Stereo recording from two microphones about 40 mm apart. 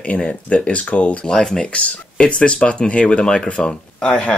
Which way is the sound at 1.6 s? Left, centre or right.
Left.